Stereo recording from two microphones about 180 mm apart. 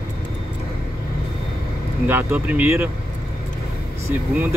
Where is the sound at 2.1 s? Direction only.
10° right (ahead or behind).